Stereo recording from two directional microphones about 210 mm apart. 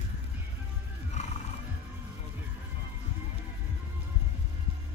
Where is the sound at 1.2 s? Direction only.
35° left (ahead or behind).